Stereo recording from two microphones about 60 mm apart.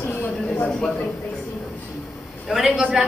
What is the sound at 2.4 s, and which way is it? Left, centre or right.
Speech, centre.